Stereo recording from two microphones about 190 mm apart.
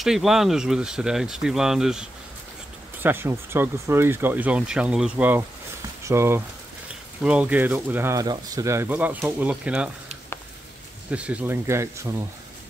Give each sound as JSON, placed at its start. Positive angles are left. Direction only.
{"t": 0.0, "sound": "speech", "side_deg": 0}
{"t": 11.1, "sound": "speech", "side_deg": -5}